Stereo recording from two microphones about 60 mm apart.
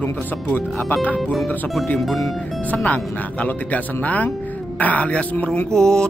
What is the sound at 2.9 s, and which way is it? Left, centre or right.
Speech, left.